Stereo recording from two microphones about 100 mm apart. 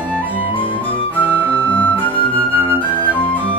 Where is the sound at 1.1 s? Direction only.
15° left (ahead or behind).